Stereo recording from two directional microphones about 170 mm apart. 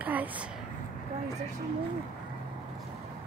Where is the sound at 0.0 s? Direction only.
10° right (ahead or behind).